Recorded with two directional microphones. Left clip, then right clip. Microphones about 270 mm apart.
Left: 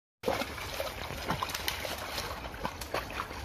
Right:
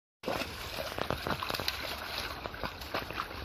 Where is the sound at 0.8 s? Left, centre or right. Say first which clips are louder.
Right 5 dB; centre.